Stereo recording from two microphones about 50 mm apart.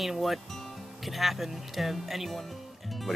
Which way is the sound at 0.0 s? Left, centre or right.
Centre.